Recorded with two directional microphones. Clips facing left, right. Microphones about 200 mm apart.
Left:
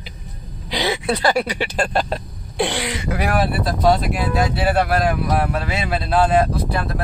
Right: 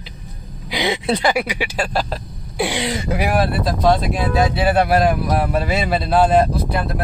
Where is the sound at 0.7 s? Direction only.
20° right (ahead or behind).